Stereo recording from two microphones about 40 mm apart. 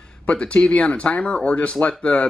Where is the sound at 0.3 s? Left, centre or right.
Left.